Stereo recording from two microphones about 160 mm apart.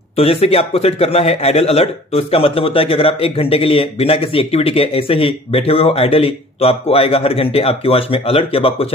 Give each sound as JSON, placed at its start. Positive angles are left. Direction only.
{"t": 0.2, "sound": "a man's voice", "side_deg": 40}